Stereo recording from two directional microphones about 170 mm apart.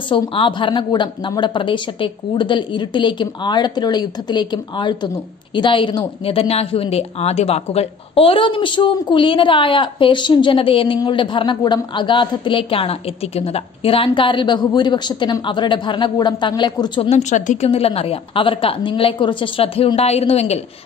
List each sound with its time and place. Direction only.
0.1 s a woman's voice: 30° left (ahead or behind)